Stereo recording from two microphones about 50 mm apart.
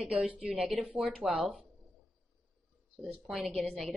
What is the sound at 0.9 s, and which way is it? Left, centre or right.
Speech, centre.